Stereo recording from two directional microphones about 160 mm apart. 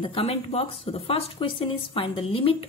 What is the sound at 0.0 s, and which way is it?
A woman's voice, 35° left (ahead or behind).